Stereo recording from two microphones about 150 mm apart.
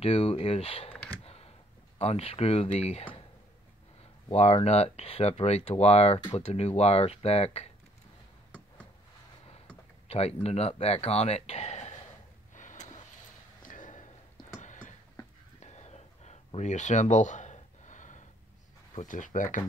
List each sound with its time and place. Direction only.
0.0 s speech: 40° left (ahead or behind)
1.2 s a sound: 45° left (ahead or behind)
2.0 s speech: 45° left (ahead or behind)
4.3 s speech: 45° left (ahead or behind)
10.0 s speech: 45° left (ahead or behind)
12.5 s vehicle: 55° left (ahead or behind)
13.6 s a sound: 60° left (ahead or behind)
18.9 s speech: 60° left (ahead or behind)